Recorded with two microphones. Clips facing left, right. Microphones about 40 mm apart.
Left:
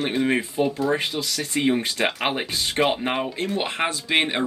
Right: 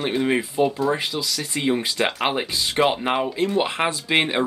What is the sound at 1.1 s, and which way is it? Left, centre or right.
Speech, left.